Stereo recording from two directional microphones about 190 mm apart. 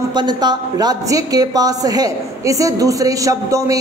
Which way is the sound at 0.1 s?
25° right (ahead or behind).